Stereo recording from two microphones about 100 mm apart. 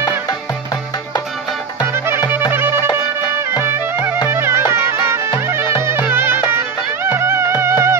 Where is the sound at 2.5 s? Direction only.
20° right (ahead or behind).